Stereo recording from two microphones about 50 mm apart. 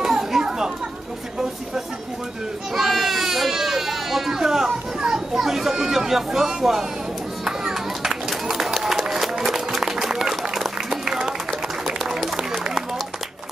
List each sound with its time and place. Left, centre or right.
0.0 s children playing: centre
2.7 s baby cry: centre
7.4 s a sound: centre